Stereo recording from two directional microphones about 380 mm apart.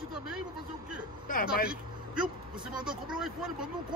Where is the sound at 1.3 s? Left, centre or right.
Left.